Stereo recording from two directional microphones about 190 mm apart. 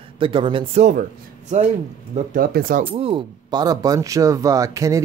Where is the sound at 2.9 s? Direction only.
30° right (ahead or behind).